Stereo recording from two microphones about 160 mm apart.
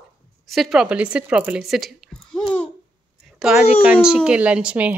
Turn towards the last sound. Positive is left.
turn(degrees=-10)  # may be behind; listen again after turning